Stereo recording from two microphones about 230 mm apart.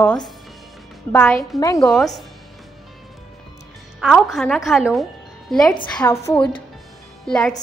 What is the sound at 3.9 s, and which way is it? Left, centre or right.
A woman's voice, centre.